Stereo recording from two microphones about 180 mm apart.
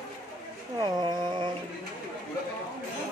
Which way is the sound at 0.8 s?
25° right (ahead or behind).